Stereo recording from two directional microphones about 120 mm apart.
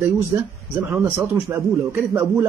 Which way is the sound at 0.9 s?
15° right (ahead or behind).